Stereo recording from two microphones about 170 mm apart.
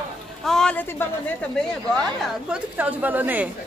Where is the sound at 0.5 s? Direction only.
5° left (ahead or behind).